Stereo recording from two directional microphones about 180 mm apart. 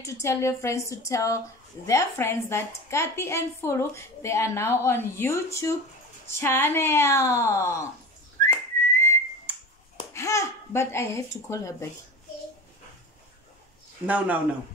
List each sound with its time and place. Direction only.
0.0 s a woman's voice: 15° left (ahead or behind)
8.4 s whistling: 15° left (ahead or behind)
10.1 s a woman's voice: 15° left (ahead or behind)
14.0 s speech: 10° right (ahead or behind)